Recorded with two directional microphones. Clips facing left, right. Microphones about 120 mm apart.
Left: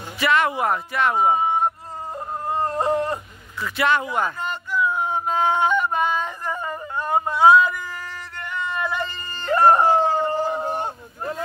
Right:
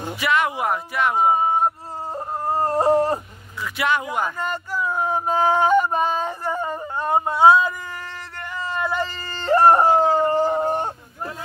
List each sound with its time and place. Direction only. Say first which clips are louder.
0.2 s speech: left 2 dB; 10° right (ahead or behind)
1.4 s a sound: right 1 dB; 35° right (ahead or behind)
3.6 s speech: left 2 dB; 10° right (ahead or behind)
4.4 s yodeling: left 1 dB; 40° right (ahead or behind)
8.4 s dog: even; 30° right (ahead or behind); by 10.9 s 45° right (ahead or behind)